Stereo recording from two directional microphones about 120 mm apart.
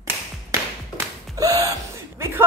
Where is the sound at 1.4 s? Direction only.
30° right (ahead or behind).